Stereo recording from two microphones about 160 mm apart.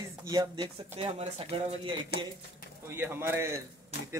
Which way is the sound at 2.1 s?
90° left.